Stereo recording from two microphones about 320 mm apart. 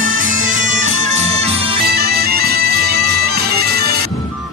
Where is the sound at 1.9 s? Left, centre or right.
Right.